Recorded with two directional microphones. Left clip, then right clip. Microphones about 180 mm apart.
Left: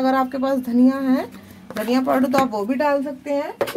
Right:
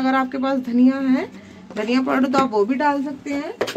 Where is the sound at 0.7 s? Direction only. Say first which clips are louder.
Right 1 dB; 50° left (ahead or behind).